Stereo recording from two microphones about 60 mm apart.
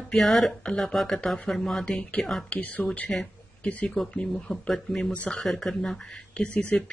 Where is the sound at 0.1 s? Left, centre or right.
Centre; by 3.1 s left.